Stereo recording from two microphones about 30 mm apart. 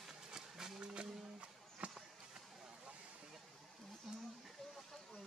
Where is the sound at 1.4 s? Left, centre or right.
Right.